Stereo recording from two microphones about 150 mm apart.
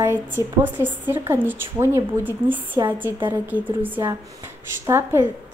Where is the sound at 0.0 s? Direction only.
15° right (ahead or behind).